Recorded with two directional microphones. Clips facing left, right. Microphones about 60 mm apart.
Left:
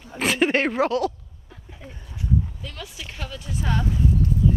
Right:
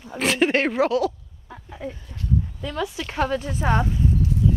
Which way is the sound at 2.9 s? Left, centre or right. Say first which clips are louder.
Right 12 dB; right.